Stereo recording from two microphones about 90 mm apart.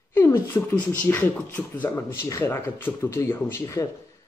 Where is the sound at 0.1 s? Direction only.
30° left (ahead or behind).